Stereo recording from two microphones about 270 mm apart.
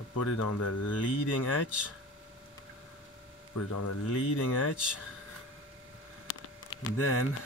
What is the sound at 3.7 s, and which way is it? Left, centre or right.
Speech, left.